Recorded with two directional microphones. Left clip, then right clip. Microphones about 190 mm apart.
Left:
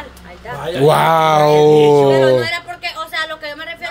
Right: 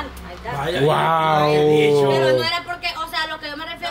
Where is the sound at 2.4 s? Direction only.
20° left (ahead or behind).